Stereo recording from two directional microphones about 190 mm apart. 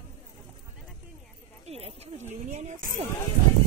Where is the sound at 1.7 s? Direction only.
35° right (ahead or behind).